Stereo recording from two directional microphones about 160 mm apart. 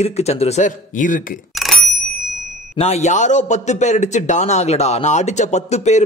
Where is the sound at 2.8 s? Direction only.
45° left (ahead or behind).